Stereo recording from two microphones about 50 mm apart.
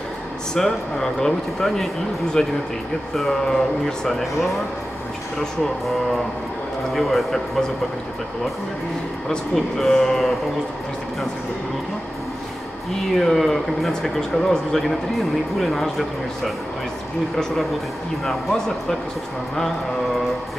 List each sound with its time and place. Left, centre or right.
0.6 s speech: centre
9.8 s speech: centre
13.1 s speech: centre
18.2 s speech: centre